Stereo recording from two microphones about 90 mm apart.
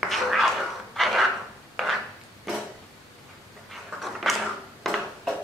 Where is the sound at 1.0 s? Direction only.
Centre (ahead or behind).